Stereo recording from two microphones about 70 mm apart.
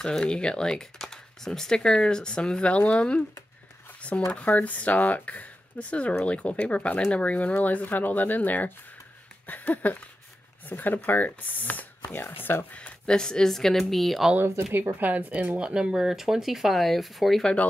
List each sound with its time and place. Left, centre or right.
0.0 s speech: centre
4.3 s speech: centre
12.7 s speech: centre
14.5 s speech: right; by 17.6 s centre